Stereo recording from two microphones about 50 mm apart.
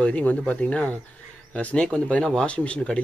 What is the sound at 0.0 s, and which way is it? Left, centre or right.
Speech, left.